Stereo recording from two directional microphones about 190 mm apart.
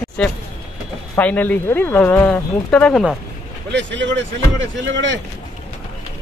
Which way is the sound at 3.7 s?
70° right (ahead or behind).